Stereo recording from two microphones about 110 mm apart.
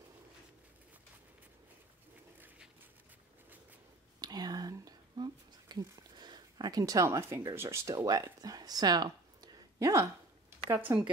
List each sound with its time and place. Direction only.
4.2 s whispering: 40° right (ahead or behind)
10.9 s speech: 25° right (ahead or behind)